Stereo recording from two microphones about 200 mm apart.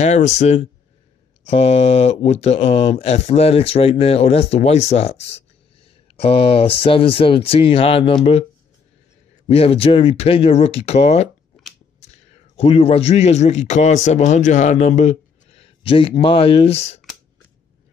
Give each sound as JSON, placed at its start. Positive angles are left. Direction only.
{"t": 0.0, "sound": "a man's voice", "side_deg": 35}
{"t": 9.5, "sound": "speech", "side_deg": 30}
{"t": 12.5, "sound": "a man's voice", "side_deg": 30}